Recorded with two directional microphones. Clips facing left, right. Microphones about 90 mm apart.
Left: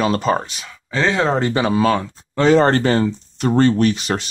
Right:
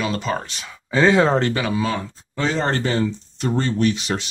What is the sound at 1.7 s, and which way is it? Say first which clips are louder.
Speech: left 6 dB; 60° left (ahead or behind).